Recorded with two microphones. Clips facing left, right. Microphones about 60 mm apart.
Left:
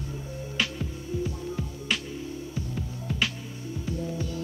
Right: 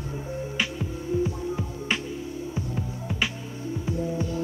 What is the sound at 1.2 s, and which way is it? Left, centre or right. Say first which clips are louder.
Music: right 4 dB; right.